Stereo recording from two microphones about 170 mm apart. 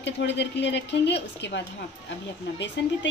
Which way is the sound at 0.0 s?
90° left.